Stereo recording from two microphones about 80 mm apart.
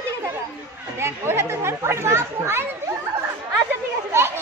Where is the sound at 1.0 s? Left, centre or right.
Right.